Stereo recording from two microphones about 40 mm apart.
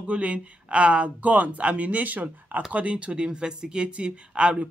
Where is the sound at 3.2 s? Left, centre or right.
Right.